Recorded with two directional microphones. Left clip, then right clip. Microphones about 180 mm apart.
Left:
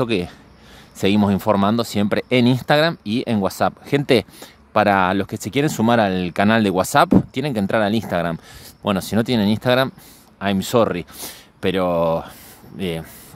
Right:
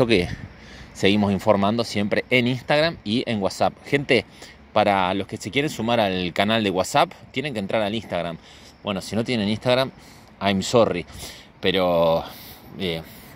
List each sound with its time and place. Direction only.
0.0 s speech: 15° left (ahead or behind); by 13.0 s 35° left (ahead or behind)